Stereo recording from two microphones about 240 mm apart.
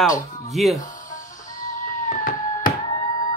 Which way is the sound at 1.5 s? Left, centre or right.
Left.